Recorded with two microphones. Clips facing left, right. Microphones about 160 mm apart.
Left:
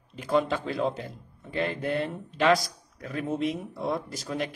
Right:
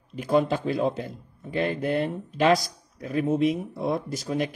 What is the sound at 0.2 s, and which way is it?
Speech, 20° right (ahead or behind).